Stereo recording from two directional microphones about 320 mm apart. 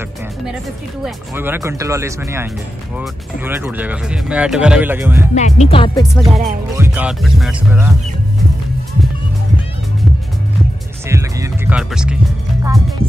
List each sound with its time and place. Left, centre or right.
1.0 s speech: centre
5.3 s music: left
6.1 s speech: centre
11.1 s speech: centre